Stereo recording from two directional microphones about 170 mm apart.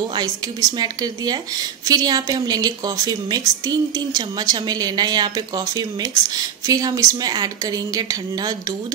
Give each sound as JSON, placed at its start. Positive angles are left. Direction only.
{"t": 0.1, "sound": "a woman's voice", "side_deg": -20}
{"t": 6.3, "sound": "a woman's voice", "side_deg": -20}